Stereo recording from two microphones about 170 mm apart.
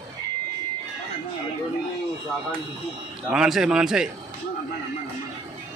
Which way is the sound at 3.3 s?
5° right (ahead or behind).